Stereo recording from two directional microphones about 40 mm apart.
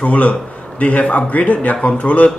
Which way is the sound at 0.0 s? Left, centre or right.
Left.